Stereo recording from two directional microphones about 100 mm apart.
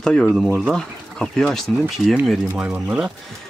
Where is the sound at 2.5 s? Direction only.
15° right (ahead or behind).